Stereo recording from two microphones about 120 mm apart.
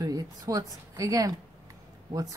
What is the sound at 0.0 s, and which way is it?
Speech, 30° right (ahead or behind).